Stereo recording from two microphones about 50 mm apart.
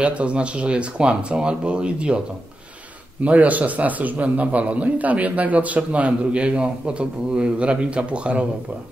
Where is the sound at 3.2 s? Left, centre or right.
Right.